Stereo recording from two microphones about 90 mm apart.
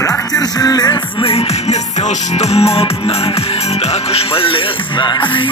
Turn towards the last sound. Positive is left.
turn(degrees=80)